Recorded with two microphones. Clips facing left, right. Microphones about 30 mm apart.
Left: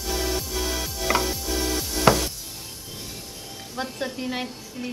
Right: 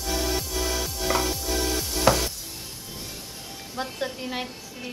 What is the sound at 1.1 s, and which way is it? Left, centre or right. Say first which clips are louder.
Music: left 2 dB; left.